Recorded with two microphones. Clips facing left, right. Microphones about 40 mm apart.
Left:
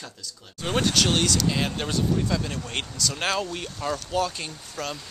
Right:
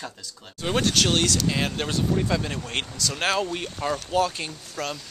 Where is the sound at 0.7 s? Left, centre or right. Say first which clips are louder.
Even; centre.